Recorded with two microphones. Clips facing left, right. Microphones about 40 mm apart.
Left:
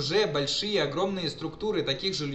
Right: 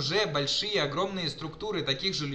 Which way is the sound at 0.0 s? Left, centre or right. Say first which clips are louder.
Left 2 dB; centre.